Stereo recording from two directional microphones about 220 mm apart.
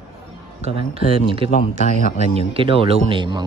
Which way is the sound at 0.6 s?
25° right (ahead or behind).